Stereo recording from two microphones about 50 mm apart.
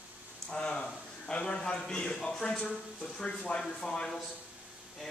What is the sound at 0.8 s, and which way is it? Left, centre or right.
A man's voice, centre.